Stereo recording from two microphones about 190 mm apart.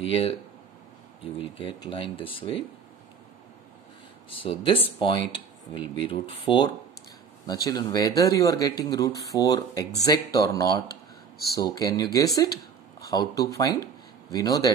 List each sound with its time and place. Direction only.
0.0 s speech: 30° left (ahead or behind)
1.4 s speech: 25° left (ahead or behind)
4.3 s speech: 30° left (ahead or behind)